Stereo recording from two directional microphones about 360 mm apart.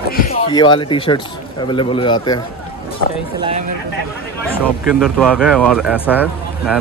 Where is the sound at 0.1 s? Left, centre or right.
Left.